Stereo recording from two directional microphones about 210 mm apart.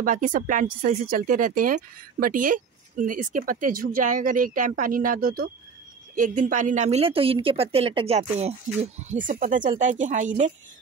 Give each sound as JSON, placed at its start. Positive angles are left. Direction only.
{"t": 0.0, "sound": "speech", "side_deg": -40}